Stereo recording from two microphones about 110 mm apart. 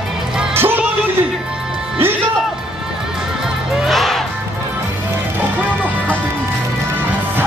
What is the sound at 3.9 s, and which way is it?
Music, centre (ahead or behind).